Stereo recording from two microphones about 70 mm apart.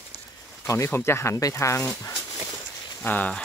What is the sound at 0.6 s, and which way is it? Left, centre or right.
Speech, left.